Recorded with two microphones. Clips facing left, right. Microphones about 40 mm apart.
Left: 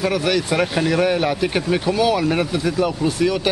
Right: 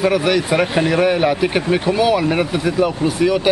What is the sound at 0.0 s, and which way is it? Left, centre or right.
Speech, centre.